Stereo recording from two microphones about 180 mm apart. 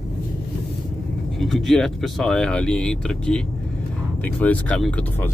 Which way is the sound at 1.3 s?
Centre (ahead or behind).